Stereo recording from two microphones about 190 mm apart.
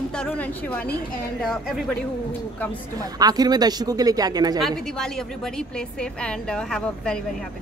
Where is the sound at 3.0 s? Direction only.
20° right (ahead or behind).